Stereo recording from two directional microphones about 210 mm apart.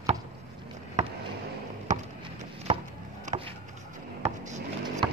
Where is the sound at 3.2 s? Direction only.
25° right (ahead or behind).